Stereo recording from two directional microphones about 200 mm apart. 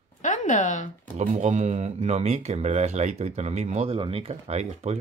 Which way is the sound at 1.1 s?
35° right (ahead or behind).